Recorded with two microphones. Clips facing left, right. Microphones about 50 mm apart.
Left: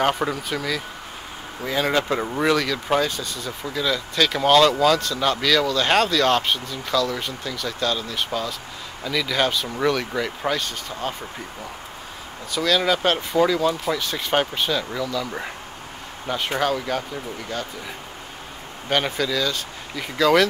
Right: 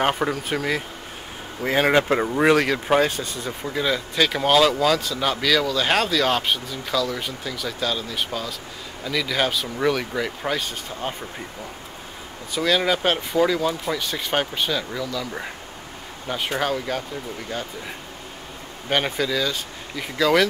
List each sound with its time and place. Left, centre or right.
0.0 s speech: centre
0.5 s speech: right
3.7 s speech: centre
12.5 s speech: centre
18.9 s speech: centre